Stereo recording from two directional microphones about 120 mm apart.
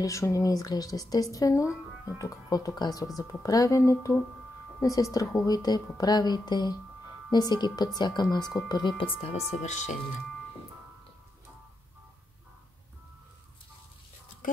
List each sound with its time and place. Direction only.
0.0 s a woman's voice: 25° left (ahead or behind); by 9.4 s 50° left (ahead or behind)
9.5 s speech: 75° left (ahead or behind)